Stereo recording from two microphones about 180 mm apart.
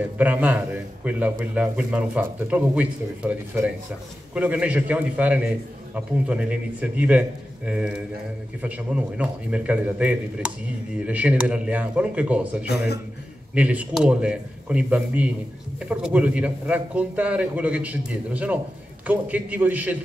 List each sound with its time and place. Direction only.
0.2 s a man's voice: 10° right (ahead or behind)
12.6 s a man's voice: 65° left (ahead or behind)
13.6 s a man's voice: 5° right (ahead or behind)